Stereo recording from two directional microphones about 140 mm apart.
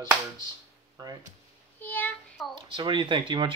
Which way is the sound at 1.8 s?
15° left (ahead or behind).